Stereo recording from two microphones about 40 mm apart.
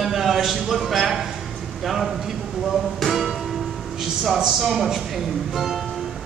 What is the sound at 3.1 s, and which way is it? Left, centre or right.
Music, centre.